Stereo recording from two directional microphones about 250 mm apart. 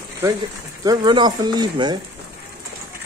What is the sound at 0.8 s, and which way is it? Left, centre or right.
Speech, centre.